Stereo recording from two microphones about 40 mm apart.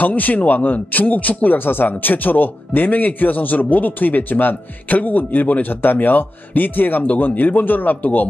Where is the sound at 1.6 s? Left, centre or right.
Left.